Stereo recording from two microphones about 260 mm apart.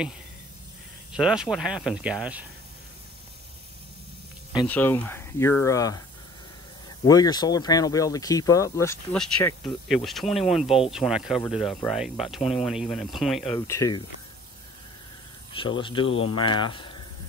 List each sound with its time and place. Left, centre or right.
1.1 s speech: centre
4.6 s speech: centre
7.1 s speech: centre
13.4 s speech: centre
15.8 s speech: centre